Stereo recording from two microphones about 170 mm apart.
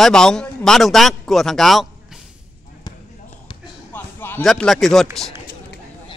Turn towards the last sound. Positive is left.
turn(degrees=0)  # may be behind; listen again after turning